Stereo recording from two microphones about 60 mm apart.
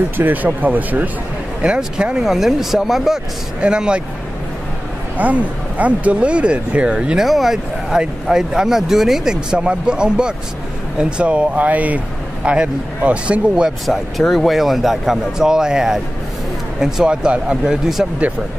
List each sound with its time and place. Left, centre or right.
0.2 s speech: right
1.6 s speech: centre
3.6 s speech: centre
5.1 s speech: right
7.2 s speech: centre
13.7 s speech: centre